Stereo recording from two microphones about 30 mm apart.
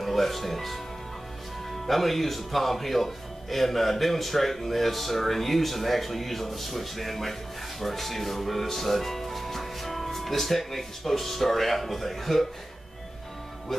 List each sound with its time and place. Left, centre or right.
0.0 s speech: centre
1.9 s speech: centre